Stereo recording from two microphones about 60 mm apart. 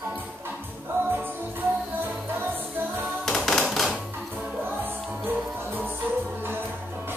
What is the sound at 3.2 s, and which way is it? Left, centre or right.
Music, centre.